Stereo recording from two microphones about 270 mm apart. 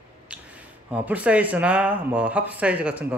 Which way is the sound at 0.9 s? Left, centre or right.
Centre.